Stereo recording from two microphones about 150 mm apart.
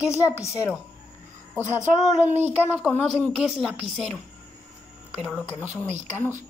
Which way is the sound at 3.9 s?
5° left (ahead or behind).